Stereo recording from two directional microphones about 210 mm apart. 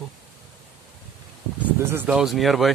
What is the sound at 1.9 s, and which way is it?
Speech, 5° right (ahead or behind).